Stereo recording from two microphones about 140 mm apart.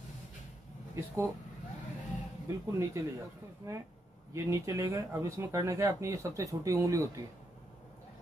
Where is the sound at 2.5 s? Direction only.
20° right (ahead or behind).